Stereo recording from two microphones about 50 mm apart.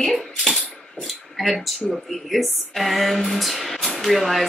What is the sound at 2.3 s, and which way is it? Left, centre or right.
A woman's voice, centre.